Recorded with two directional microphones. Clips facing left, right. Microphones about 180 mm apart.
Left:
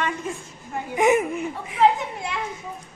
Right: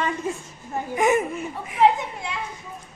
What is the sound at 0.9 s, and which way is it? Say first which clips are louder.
Speech: left 2 dB; 15° left (ahead or behind).